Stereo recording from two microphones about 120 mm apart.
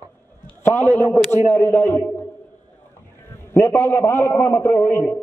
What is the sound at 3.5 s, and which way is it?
A man's voice, 20° left (ahead or behind).